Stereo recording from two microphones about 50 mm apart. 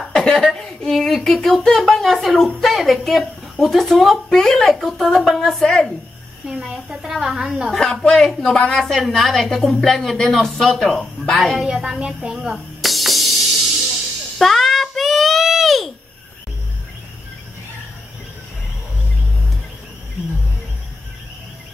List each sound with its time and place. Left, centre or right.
0.0 s speech: centre
6.7 s a woman's voice: centre
7.1 s a woman's voice: centre
7.7 s a woman's voice: centre
11.6 s a woman's voice: centre
12.8 s music: centre
14.4 s a sound: centre